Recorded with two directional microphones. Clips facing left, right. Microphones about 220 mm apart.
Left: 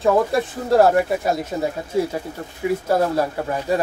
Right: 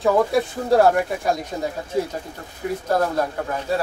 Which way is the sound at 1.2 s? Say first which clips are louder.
Left 1 dB; 5° left (ahead or behind).